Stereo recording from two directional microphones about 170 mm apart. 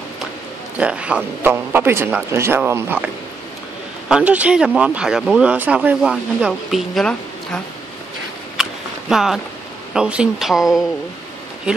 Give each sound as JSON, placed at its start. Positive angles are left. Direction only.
{"t": 0.7, "sound": "a man's voice", "side_deg": -5}
{"t": 4.1, "sound": "speech", "side_deg": -10}
{"t": 9.1, "sound": "speech", "side_deg": 0}